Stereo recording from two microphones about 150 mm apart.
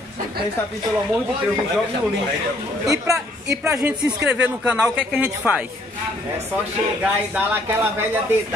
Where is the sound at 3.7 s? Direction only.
10° right (ahead or behind).